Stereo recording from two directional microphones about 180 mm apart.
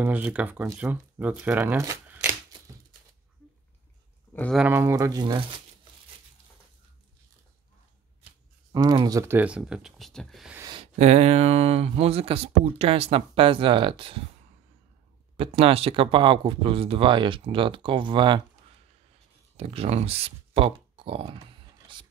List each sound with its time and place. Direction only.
0.0 s speech: 10° right (ahead or behind)
4.3 s a sound: 10° left (ahead or behind)
4.6 s speech: 10° right (ahead or behind)
8.7 s speech: 20° right (ahead or behind); by 10.5 s centre (ahead or behind)
10.7 s speech: 35° right (ahead or behind)
15.3 s speech: 30° right (ahead or behind)
19.5 s speech: 35° right (ahead or behind)